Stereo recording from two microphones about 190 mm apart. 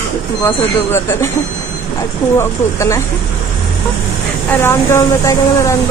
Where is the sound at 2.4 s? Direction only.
15° left (ahead or behind).